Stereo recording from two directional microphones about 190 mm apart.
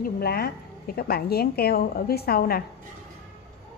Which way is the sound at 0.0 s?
55° left (ahead or behind).